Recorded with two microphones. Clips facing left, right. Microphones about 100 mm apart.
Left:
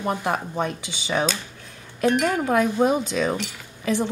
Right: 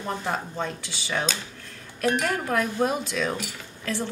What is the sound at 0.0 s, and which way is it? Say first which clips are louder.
A woman's voice: left 4 dB; 15° left (ahead or behind).